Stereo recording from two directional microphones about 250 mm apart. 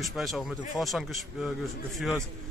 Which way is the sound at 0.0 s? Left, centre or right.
Centre.